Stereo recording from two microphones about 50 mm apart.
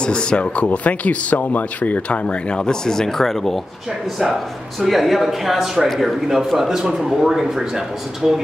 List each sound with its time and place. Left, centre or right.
0.0 s speech: centre
4.7 s speech: centre